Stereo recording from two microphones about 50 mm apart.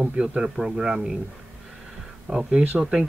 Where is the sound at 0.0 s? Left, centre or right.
Right.